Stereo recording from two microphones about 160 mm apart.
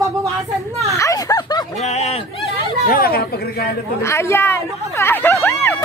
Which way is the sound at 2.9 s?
70° left (ahead or behind).